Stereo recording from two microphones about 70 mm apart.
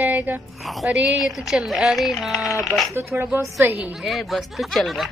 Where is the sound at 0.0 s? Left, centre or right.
Right.